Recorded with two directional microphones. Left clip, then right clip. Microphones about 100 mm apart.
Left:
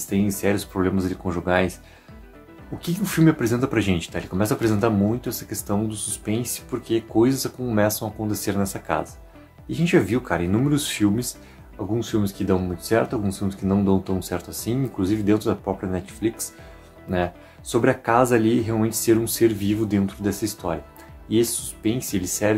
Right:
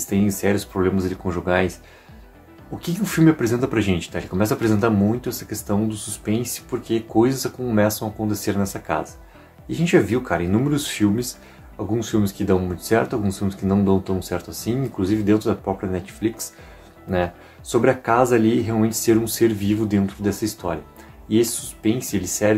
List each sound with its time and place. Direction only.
0.0 s speech: 30° left (ahead or behind)
2.8 s speech: 30° left (ahead or behind)
9.7 s speech: 25° left (ahead or behind)
12.0 s speech: 20° left (ahead or behind)